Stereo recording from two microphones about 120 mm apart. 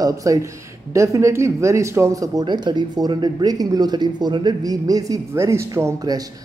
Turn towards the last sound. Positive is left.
turn(degrees=-25)  # may be behind; listen again after turning